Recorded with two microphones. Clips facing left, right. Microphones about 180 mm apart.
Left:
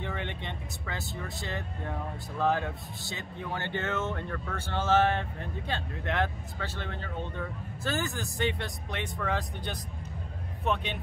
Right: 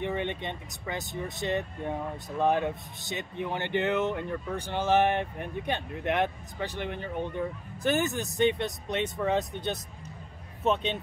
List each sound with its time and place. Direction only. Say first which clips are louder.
0.0 s speech: right 5 dB; 20° right (ahead or behind)